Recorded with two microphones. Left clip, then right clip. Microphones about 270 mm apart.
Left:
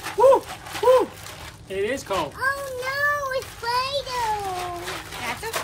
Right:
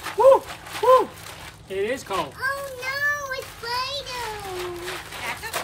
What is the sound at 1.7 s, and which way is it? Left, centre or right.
Speech, centre.